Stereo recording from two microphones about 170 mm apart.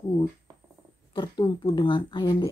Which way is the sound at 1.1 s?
25° left (ahead or behind).